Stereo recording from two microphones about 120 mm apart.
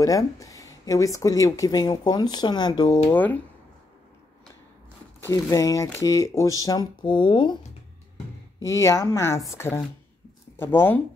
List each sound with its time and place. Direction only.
0.0 s speech: 30° left (ahead or behind)
3.1 s speech: 15° left (ahead or behind)
5.2 s speech: 25° left (ahead or behind)
8.6 s speech: 25° left (ahead or behind)